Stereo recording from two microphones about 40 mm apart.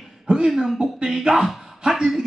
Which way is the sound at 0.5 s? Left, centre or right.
Centre.